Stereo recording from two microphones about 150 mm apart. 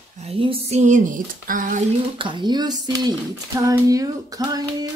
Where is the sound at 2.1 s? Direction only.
35° right (ahead or behind).